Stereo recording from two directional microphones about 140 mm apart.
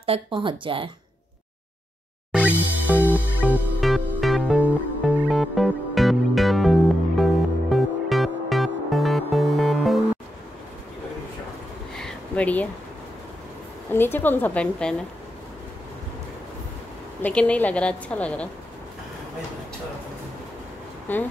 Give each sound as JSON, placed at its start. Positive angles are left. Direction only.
{"t": 0.0, "sound": "speech", "side_deg": -40}
{"t": 2.3, "sound": "music", "side_deg": -10}
{"t": 3.8, "sound": "music", "side_deg": 0}
{"t": 12.0, "sound": "a sound", "side_deg": 10}
{"t": 13.9, "sound": "a woman's voice", "side_deg": 15}
{"t": 17.2, "sound": "a woman's voice", "side_deg": 10}
{"t": 21.1, "sound": "a woman's voice", "side_deg": 10}